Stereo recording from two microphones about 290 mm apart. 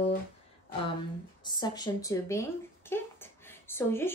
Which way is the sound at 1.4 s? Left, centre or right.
Centre.